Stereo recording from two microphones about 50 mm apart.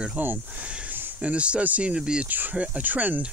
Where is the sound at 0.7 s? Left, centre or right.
Right.